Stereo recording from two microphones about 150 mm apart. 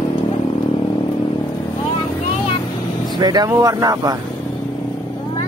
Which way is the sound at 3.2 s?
25° right (ahead or behind).